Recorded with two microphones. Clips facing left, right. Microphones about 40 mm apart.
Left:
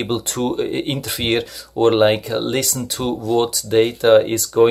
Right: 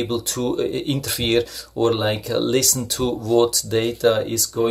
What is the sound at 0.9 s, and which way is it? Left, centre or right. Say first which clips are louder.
Speech: even; centre.